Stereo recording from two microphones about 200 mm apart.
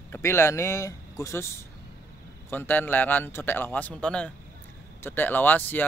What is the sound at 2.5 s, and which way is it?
Speech, 10° left (ahead or behind).